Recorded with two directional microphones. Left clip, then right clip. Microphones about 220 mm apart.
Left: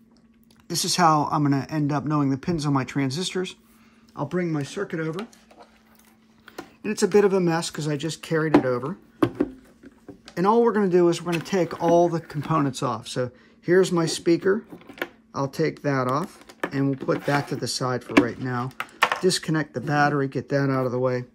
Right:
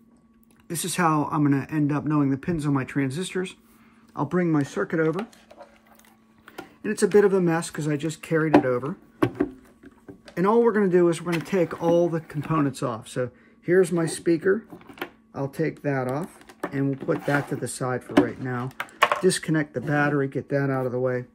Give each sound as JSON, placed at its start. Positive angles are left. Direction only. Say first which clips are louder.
{"t": 0.7, "sound": "speech", "louder": "left 4 dB", "side_deg": 10}
{"t": 4.5, "sound": "speech", "louder": "right 4 dB", "side_deg": -10}
{"t": 6.4, "sound": "speech", "louder": "even", "side_deg": 5}
{"t": 10.3, "sound": "speech", "louder": "left 1 dB", "side_deg": 5}
{"t": 16.7, "sound": "speech", "louder": "left 1 dB", "side_deg": 10}